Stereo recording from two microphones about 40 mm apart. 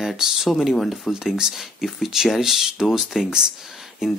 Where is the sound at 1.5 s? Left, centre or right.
Centre.